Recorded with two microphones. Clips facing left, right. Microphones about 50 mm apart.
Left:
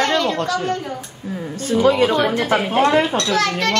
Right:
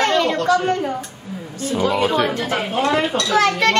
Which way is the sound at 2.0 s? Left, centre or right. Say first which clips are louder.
Left 2 dB; centre.